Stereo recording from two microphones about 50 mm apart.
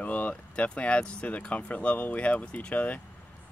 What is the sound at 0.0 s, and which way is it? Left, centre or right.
Speech, left.